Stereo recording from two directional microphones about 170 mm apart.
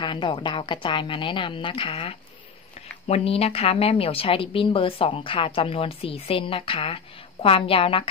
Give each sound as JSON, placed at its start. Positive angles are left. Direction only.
{"t": 0.0, "sound": "a woman's voice", "side_deg": 30}